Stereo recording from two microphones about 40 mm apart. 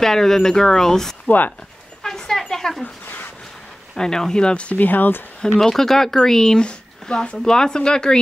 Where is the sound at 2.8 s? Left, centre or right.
Left.